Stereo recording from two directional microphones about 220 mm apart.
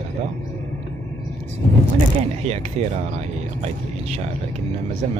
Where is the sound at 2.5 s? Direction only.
30° right (ahead or behind).